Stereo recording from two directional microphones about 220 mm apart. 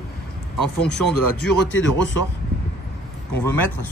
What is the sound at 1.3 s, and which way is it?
Speech, 60° left (ahead or behind).